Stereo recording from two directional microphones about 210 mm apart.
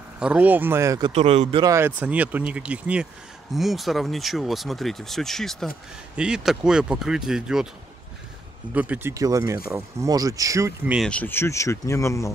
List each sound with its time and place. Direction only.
0.2 s speech: 5° right (ahead or behind)
1.1 s speech: 30° right (ahead or behind)
1.6 s speech: 15° right (ahead or behind)
8.7 s speech: 5° right (ahead or behind)
11.0 s speech: 5° left (ahead or behind)